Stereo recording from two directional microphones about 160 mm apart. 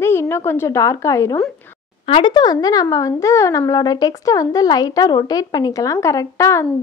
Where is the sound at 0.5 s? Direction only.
15° left (ahead or behind).